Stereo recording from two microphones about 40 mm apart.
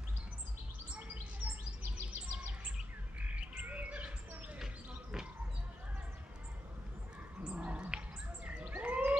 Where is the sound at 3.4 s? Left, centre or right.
Right.